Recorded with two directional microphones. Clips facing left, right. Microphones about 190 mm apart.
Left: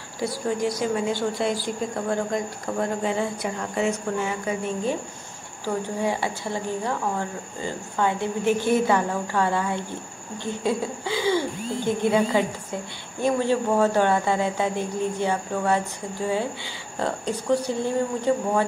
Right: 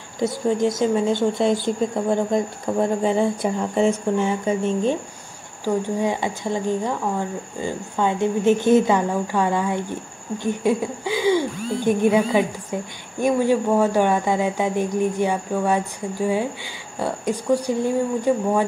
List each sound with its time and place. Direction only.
0.2 s a woman's voice: 20° right (ahead or behind)